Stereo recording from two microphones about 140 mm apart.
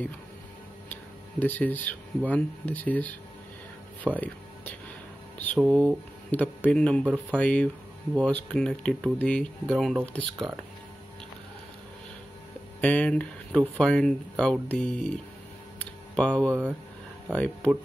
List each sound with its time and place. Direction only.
1.4 s speech: 15° left (ahead or behind)
4.0 s music: 10° left (ahead or behind)
5.7 s speech: 10° left (ahead or behind)
12.8 s speech: 10° left (ahead or behind)
15.8 s a sound: 10° left (ahead or behind)
17.3 s speech: 10° left (ahead or behind)